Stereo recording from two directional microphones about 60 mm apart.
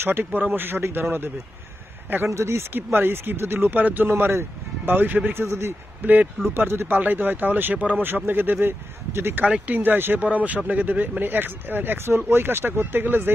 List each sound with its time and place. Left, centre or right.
0.0 s speech: right
2.3 s a man's voice: right
2.7 s speech: right
5.4 s a man's voice: right
6.0 s speech: right